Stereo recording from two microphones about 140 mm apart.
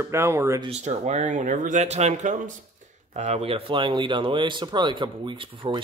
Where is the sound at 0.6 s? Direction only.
55° right (ahead or behind).